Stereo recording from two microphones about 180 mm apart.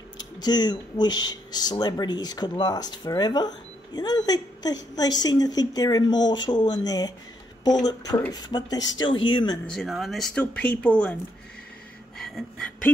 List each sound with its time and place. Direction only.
0.2 s speech: 25° left (ahead or behind)
9.8 s speech: centre (ahead or behind)
12.2 s a sound: centre (ahead or behind)